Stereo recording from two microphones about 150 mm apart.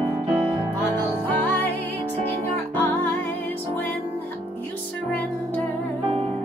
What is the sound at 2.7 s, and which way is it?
Music, 10° left (ahead or behind).